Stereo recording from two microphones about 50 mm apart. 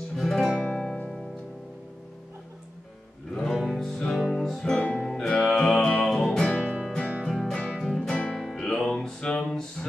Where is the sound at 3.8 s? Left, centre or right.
Centre.